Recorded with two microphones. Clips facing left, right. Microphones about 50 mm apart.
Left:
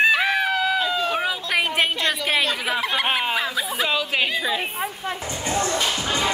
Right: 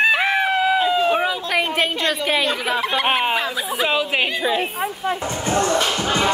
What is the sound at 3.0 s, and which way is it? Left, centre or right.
Speech, centre.